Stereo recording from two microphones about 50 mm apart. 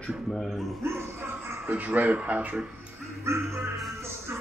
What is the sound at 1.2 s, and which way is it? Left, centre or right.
Music, right.